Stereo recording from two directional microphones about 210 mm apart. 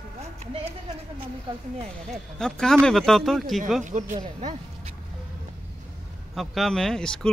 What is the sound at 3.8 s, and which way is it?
Speech, 35° right (ahead or behind).